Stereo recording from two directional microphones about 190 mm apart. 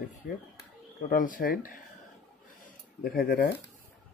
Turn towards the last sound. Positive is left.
turn(degrees=50)  # may be behind; listen again after turning